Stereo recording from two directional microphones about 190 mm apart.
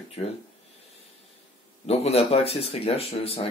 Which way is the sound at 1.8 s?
30° left (ahead or behind).